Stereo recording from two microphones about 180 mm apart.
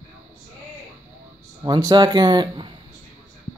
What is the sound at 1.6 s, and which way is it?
Speech, 20° right (ahead or behind).